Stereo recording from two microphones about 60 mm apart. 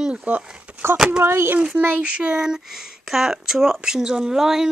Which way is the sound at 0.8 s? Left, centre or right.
Right.